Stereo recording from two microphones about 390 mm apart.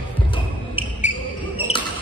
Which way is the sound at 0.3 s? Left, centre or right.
Centre.